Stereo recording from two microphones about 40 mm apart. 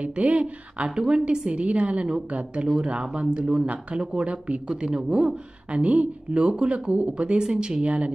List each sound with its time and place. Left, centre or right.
0.0 s a woman's voice: right
4.0 s a woman's voice: right
5.7 s a woman's voice: right
7.8 s speech: right